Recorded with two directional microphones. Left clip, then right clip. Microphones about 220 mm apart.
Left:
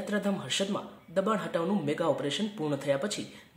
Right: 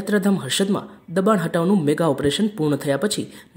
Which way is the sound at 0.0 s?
40° right (ahead or behind).